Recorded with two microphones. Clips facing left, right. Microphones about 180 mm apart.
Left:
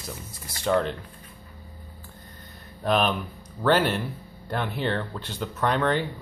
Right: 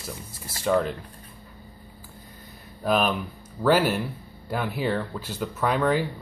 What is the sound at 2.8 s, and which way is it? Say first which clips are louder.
Speech: even; 5° right (ahead or behind).